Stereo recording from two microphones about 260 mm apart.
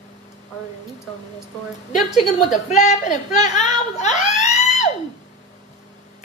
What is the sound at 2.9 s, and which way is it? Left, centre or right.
A woman's voice, left.